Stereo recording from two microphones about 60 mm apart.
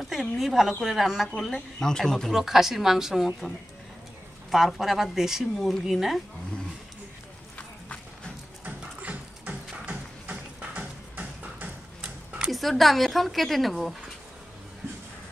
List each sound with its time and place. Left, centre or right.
0.0 s speech: centre
1.4 s speech: centre
2.3 s a woman's voice: centre
4.7 s speech: centre
8.6 s music: right
12.4 s speech: centre